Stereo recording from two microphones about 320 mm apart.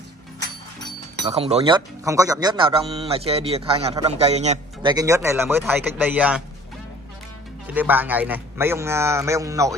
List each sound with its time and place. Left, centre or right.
1.2 s speech: centre
7.6 s speech: centre